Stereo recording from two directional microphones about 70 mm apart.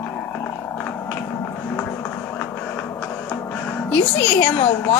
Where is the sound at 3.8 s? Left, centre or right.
Left.